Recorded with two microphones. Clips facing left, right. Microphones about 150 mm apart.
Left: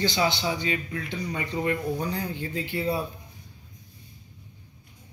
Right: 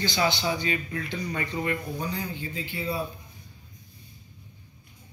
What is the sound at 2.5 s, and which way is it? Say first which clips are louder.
Speech: left 5 dB; 65° left (ahead or behind).